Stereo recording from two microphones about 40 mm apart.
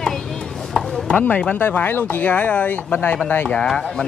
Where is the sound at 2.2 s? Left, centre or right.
Left.